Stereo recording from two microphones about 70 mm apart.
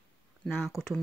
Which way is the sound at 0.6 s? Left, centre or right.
Centre.